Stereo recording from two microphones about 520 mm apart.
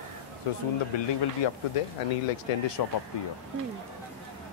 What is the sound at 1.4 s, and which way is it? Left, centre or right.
Speech, left.